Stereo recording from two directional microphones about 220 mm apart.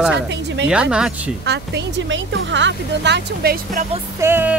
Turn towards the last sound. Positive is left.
turn(degrees=-10)  # may be behind; listen again after turning